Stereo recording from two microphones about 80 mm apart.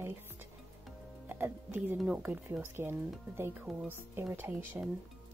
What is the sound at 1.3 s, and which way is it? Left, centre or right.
Speech, right.